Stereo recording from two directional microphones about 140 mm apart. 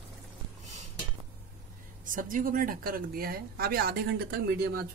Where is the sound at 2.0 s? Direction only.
75° right (ahead or behind); by 4.3 s 90° right.